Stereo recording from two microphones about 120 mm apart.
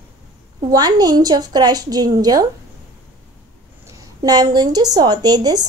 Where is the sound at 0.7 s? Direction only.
35° right (ahead or behind).